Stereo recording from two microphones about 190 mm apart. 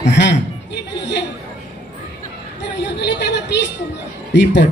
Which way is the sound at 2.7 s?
65° left (ahead or behind).